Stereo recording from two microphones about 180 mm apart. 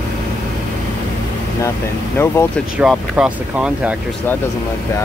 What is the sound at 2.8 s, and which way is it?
Speech, 5° right (ahead or behind).